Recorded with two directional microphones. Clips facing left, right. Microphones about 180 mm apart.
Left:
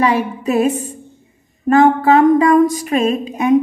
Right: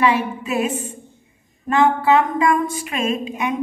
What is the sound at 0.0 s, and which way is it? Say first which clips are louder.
Speech: left 3 dB; 40° left (ahead or behind).